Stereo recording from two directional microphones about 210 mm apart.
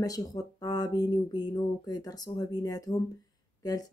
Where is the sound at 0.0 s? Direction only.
15° left (ahead or behind).